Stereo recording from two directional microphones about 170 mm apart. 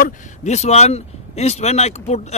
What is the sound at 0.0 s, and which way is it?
Speech, 40° left (ahead or behind).